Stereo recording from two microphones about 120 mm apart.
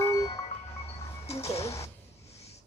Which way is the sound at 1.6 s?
25° left (ahead or behind).